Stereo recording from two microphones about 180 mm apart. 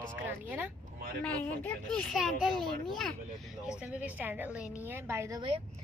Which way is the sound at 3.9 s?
10° right (ahead or behind).